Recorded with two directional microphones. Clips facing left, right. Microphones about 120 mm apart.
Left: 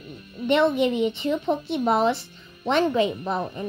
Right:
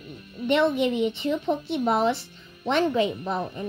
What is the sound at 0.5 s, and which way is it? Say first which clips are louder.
A child's voice: left 2 dB; 30° left (ahead or behind).